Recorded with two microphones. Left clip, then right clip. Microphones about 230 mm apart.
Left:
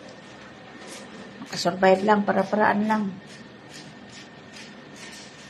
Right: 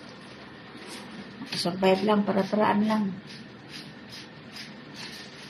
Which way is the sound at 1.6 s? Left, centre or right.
Centre.